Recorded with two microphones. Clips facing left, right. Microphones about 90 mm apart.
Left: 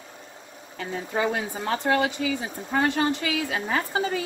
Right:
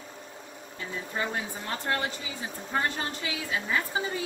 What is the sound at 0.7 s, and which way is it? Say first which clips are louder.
Speech: left 6 dB; 90° left.